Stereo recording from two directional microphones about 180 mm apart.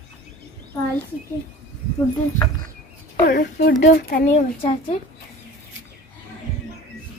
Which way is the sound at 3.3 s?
60° left (ahead or behind).